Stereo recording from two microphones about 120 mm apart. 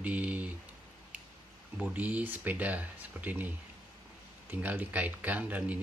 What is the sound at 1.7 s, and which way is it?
Speech, 10° right (ahead or behind).